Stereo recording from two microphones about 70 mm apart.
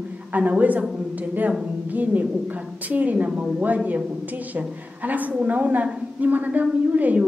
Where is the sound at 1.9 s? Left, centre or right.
Right.